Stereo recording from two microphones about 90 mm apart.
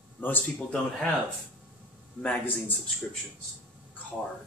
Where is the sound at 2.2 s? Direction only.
15° left (ahead or behind).